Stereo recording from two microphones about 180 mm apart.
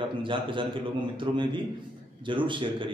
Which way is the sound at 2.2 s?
25° right (ahead or behind).